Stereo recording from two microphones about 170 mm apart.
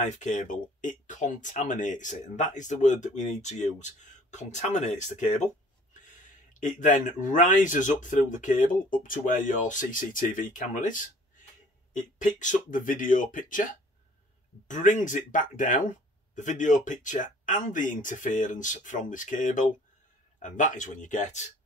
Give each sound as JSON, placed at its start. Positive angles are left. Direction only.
{"t": 0.0, "sound": "speech", "side_deg": 45}
{"t": 6.6, "sound": "speech", "side_deg": 50}
{"t": 12.2, "sound": "speech", "side_deg": 50}